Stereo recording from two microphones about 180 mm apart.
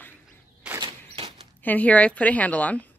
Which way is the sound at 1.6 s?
10° left (ahead or behind).